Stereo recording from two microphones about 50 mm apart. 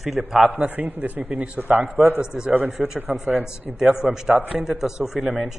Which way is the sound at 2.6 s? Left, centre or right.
Centre.